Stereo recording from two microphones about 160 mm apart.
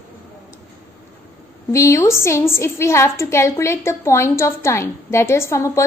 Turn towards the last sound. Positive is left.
turn(degrees=20)  # may be behind; listen again after turning